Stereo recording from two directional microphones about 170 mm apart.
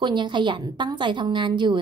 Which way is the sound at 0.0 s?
25° right (ahead or behind).